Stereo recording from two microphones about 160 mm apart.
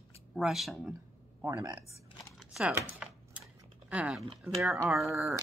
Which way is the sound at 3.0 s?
10° right (ahead or behind).